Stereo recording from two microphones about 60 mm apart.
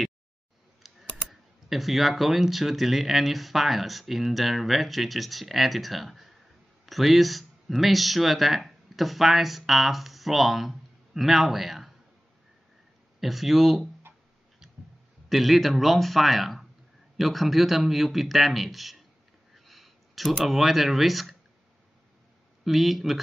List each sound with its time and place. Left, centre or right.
0.8 s typing: centre
1.3 s speech: centre
13.2 s speech: centre
14.1 s music: right
15.2 s speech: centre
22.7 s speech: centre